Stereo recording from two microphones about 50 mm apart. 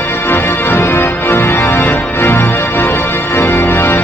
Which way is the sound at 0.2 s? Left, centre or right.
Left.